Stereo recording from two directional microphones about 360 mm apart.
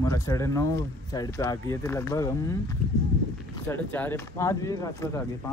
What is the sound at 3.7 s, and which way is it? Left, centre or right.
Speech, centre.